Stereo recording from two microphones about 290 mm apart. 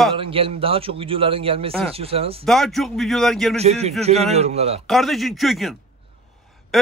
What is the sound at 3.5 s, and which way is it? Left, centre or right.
A man's voice, right.